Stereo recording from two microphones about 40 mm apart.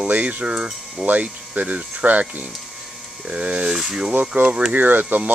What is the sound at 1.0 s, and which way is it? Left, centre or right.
Speech, right.